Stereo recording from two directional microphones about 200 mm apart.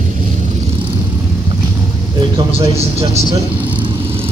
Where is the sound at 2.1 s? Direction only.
25° right (ahead or behind).